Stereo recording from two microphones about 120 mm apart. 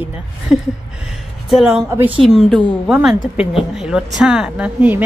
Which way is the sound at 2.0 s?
45° right (ahead or behind).